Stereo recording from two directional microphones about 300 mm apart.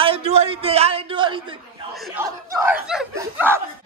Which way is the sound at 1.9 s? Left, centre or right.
Centre.